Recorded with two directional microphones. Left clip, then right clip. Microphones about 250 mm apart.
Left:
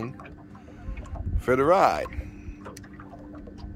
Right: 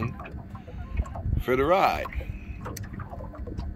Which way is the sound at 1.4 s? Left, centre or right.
Centre.